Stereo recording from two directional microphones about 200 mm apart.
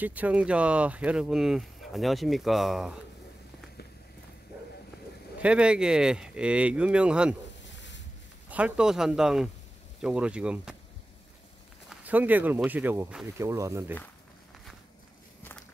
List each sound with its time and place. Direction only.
0.0 s speech: 10° right (ahead or behind)
5.4 s speech: 5° right (ahead or behind)
7.7 s a sound: 65° left (ahead or behind)
8.5 s speech: 5° right (ahead or behind)
11.9 s speech: 5° right (ahead or behind)